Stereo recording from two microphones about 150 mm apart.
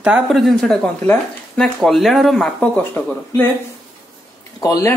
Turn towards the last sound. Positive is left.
turn(degrees=25)  # may be behind; listen again after turning